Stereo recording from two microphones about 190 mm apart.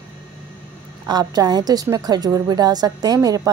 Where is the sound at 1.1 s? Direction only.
20° right (ahead or behind).